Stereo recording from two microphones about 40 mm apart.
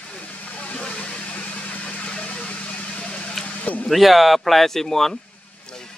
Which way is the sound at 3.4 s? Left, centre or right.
Left.